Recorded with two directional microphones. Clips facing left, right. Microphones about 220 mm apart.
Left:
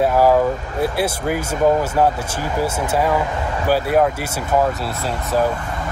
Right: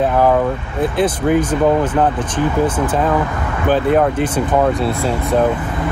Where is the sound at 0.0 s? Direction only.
5° left (ahead or behind).